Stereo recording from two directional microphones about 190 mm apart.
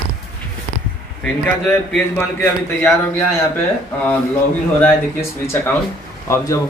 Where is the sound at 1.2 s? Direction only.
10° left (ahead or behind).